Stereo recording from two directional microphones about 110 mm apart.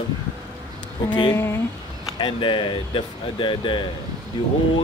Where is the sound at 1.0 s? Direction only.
45° left (ahead or behind).